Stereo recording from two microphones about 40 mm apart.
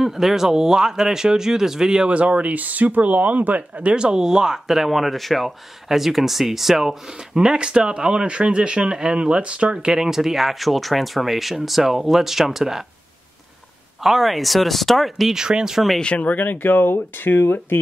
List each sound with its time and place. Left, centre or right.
0.0 s speech: centre
2.0 s speech: right
3.9 s speech: right; by 7.0 s centre
7.3 s speech: centre
9.9 s speech: centre
14.0 s speech: centre
15.3 s speech: centre
16.0 s speech: left
16.3 s speech: left